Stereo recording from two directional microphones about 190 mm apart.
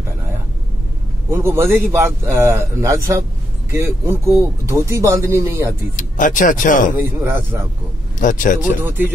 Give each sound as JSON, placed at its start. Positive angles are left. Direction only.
{"t": 1.3, "sound": "a man's voice", "side_deg": -15}
{"t": 5.9, "sound": "speech", "side_deg": 45}
{"t": 7.0, "sound": "a man's voice", "side_deg": -10}
{"t": 8.2, "sound": "speech", "side_deg": 45}
{"t": 8.8, "sound": "a man's voice", "side_deg": -10}